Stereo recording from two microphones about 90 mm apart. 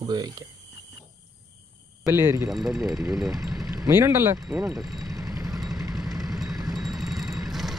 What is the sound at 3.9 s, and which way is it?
Speech, 30° right (ahead or behind).